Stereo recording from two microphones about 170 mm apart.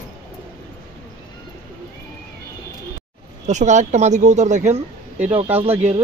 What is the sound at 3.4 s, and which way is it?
A woman's voice, 45° right (ahead or behind).